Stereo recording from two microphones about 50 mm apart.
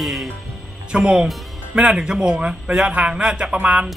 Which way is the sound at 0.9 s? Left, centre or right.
Centre.